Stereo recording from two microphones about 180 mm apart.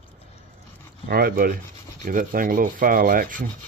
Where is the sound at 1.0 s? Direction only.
60° right (ahead or behind).